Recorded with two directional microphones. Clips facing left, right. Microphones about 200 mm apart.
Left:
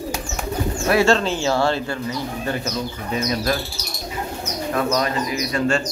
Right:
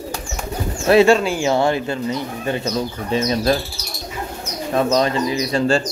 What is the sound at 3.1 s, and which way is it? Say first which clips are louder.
Speech: right 4 dB; 30° right (ahead or behind).